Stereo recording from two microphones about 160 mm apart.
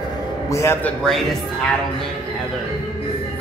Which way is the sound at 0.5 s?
15° left (ahead or behind).